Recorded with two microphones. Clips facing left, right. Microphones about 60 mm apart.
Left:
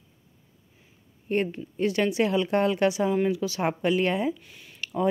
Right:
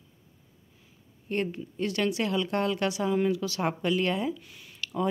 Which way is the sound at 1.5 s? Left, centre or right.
Centre.